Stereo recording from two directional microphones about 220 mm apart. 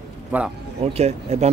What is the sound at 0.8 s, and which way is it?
Speech, 30° right (ahead or behind).